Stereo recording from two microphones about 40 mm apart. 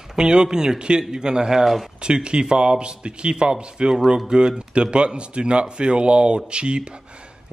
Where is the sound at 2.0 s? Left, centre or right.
Right.